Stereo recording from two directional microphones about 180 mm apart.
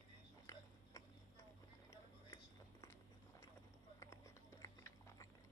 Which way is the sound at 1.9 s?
20° left (ahead or behind).